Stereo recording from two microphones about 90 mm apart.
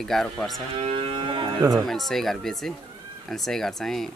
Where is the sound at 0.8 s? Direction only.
75° right (ahead or behind).